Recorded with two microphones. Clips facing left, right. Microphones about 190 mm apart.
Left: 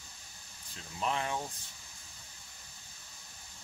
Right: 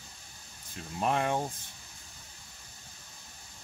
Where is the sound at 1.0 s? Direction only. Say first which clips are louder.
Right 5 dB; 55° right (ahead or behind).